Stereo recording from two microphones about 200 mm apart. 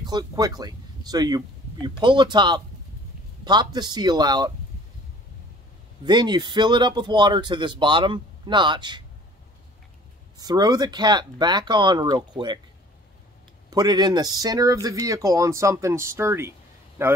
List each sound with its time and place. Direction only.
0.0 s speech: 20° right (ahead or behind)
6.0 s speech: 20° right (ahead or behind)
10.3 s speech: 20° right (ahead or behind)
13.7 s speech: 20° right (ahead or behind)